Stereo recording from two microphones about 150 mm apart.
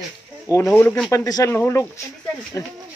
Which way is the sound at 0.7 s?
10° left (ahead or behind).